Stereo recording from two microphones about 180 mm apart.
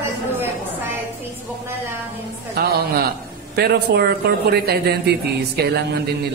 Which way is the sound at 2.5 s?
60° right (ahead or behind).